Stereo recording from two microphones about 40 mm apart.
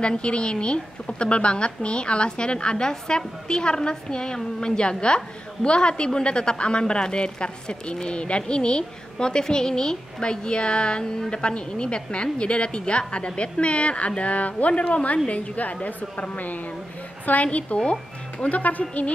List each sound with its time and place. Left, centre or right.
0.0 s a woman's voice: left